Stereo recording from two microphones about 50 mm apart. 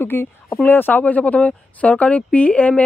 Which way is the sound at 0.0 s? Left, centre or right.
Left.